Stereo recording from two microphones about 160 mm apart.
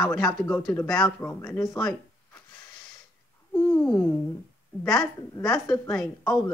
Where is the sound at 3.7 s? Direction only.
15° left (ahead or behind).